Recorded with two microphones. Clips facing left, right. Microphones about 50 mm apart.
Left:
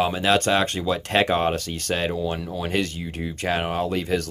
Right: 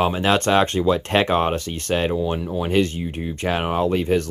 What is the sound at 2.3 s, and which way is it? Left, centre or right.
Speech, right.